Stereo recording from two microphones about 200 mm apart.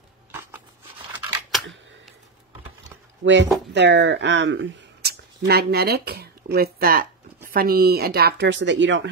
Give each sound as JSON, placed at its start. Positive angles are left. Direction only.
{"t": 1.5, "sound": "camera", "side_deg": 0}
{"t": 3.2, "sound": "speech", "side_deg": -65}